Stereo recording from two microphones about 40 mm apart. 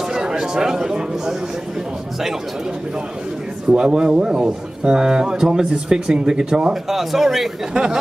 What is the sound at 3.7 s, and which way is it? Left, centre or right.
A man's voice, centre.